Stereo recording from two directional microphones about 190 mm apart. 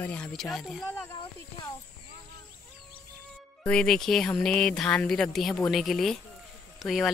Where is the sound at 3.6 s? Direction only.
5° left (ahead or behind).